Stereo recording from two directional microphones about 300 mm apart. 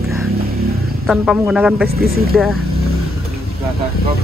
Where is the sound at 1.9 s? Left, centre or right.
Right.